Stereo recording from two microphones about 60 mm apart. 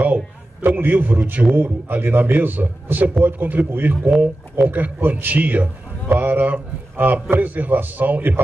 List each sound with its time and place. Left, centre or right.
0.6 s a man's voice: right